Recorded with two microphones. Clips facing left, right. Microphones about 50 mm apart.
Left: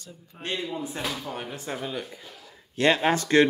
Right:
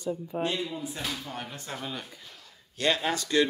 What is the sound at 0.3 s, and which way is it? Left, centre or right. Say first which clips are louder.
Speech: right 7 dB; right.